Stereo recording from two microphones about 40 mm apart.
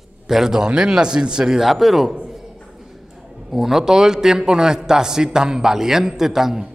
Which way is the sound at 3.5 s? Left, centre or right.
Centre.